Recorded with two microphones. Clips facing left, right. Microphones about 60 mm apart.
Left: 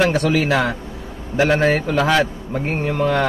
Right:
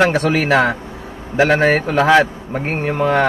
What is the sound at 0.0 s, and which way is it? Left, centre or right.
A man's voice, right.